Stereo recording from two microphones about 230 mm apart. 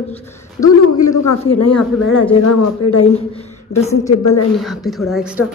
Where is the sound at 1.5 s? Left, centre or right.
Left.